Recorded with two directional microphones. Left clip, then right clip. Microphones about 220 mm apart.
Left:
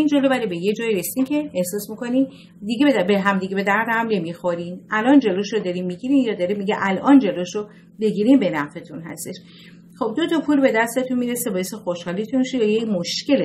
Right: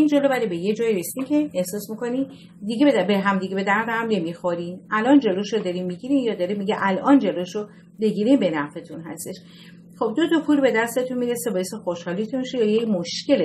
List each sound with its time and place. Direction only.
0.0 s a woman's voice: 40° left (ahead or behind)
9.9 s a woman's voice: 40° left (ahead or behind)